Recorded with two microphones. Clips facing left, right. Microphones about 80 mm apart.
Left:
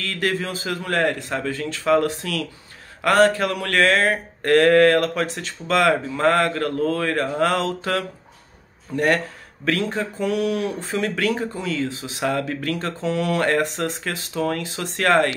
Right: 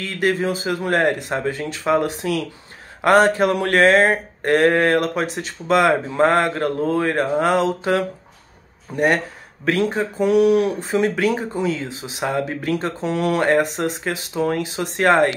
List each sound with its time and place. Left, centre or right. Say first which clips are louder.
0.0 s speech: right 4 dB; centre